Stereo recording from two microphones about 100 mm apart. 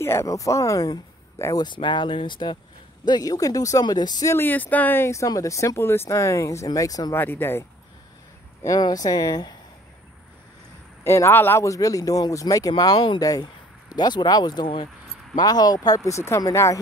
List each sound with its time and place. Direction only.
0.0 s speech: 25° left (ahead or behind); by 2.6 s 50° left (ahead or behind)
3.1 s speech: 40° left (ahead or behind)
4.3 s speech: 20° left (ahead or behind); by 7.2 s 35° left (ahead or behind)
7.2 s speech: 20° left (ahead or behind)
8.6 s speech: 40° left (ahead or behind)
11.1 s speech: 25° left (ahead or behind)
11.6 s speech: 35° left (ahead or behind)